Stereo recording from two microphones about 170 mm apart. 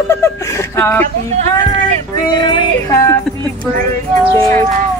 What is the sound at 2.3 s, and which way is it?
Music, 25° left (ahead or behind).